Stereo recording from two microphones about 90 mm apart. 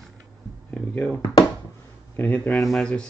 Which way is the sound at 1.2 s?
40° left (ahead or behind).